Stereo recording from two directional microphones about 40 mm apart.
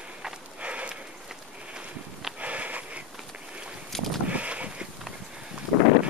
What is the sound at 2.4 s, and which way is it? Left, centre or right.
Sniff, right.